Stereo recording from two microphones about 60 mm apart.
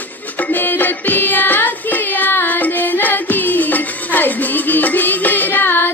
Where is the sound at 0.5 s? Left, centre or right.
Left.